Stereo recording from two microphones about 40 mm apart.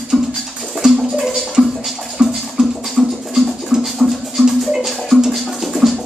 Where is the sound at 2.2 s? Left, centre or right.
Right.